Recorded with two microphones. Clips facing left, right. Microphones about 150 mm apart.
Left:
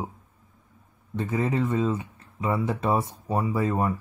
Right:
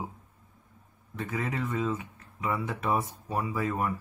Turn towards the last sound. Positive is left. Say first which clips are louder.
# left 5 dB
turn(degrees=30)  # may be behind; listen again after turning